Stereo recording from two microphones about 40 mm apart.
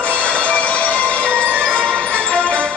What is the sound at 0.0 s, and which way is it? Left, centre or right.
Music, left.